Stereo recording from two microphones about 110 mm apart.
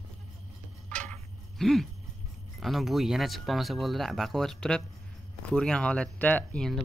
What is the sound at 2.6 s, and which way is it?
Speech, centre (ahead or behind).